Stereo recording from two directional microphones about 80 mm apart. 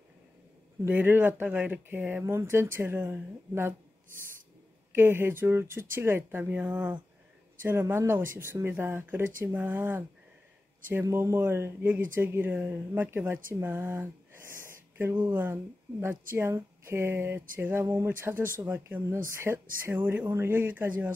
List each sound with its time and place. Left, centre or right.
0.8 s speech: right
2.2 s speech: right
4.9 s speech: right
7.6 s speech: right